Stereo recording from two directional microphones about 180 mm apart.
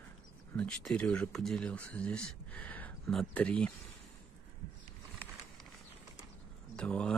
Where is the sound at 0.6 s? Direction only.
5° left (ahead or behind).